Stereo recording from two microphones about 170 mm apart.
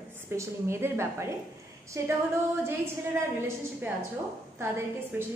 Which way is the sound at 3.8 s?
10° right (ahead or behind).